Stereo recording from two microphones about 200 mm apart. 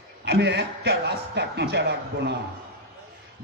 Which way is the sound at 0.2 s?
60° right (ahead or behind).